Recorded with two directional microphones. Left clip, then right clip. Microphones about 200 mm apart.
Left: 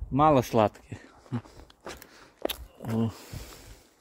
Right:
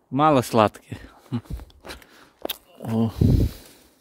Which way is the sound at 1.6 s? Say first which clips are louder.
Right 3 dB; 25° right (ahead or behind).